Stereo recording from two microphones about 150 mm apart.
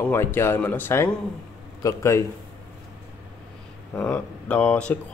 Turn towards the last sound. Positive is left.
turn(degrees=5)  # may be behind; listen again after turning